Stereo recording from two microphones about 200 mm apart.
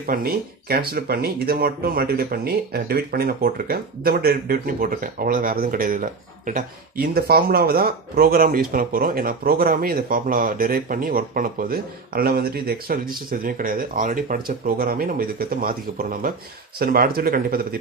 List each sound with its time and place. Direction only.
0.0 s speech: 45° right (ahead or behind)